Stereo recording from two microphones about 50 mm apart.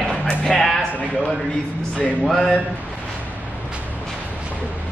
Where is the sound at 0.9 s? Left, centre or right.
Left.